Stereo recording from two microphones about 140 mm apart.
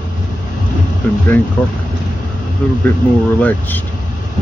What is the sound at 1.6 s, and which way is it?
Speech, 15° left (ahead or behind).